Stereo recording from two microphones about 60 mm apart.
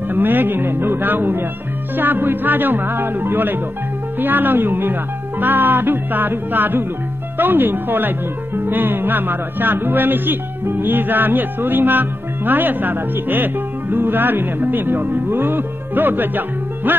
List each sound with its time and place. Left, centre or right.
0.1 s speech: right